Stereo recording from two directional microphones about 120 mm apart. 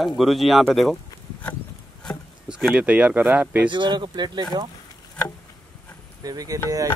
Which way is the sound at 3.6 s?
40° right (ahead or behind).